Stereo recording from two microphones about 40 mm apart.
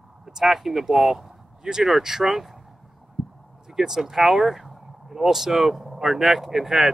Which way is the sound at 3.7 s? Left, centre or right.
Centre.